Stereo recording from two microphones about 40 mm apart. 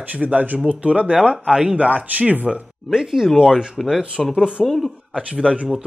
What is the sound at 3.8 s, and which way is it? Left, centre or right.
Speech, centre.